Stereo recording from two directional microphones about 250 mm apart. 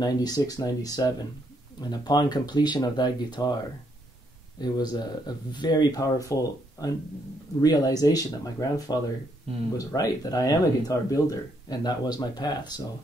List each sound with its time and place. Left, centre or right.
0.0 s speech: centre
4.6 s speech: centre